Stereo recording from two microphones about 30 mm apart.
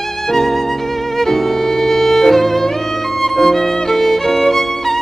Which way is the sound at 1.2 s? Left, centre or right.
Centre.